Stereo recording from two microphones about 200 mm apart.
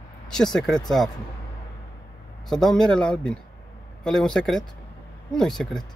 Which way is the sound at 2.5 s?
Centre (ahead or behind).